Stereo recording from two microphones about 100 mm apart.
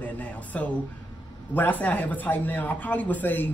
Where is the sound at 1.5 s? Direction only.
15° left (ahead or behind).